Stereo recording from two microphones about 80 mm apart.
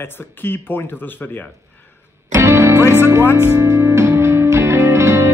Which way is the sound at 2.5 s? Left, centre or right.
Right.